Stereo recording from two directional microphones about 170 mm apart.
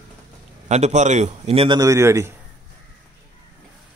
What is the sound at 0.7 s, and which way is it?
A man's voice, 40° right (ahead or behind).